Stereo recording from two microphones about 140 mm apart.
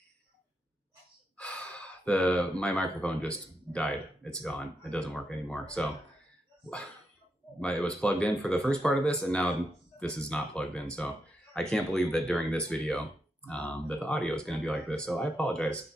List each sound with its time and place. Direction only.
1.4 s speech: 10° left (ahead or behind)
7.6 s speech: 10° left (ahead or behind)